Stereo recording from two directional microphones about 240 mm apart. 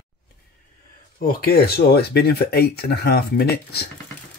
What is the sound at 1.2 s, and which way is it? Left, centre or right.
Speech, left.